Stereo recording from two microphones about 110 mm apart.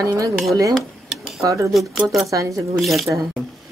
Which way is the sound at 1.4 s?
30° right (ahead or behind).